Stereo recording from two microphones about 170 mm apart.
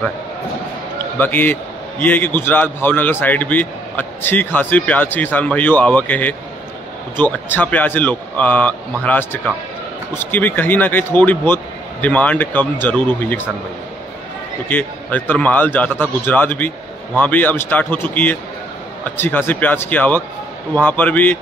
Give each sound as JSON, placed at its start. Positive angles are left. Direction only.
{"t": 1.2, "sound": "a man's voice", "side_deg": 10}
{"t": 14.7, "sound": "a man's voice", "side_deg": 10}